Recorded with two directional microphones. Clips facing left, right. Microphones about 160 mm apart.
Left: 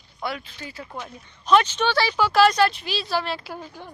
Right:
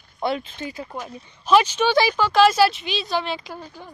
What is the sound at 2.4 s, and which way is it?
A woman's voice, 5° right (ahead or behind).